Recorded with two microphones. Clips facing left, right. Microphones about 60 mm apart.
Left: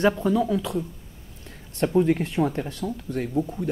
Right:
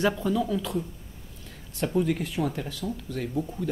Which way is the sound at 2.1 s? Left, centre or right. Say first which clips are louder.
Left 5 dB; left.